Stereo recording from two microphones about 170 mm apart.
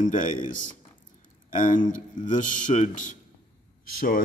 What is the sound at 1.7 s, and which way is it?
Speech, 50° left (ahead or behind).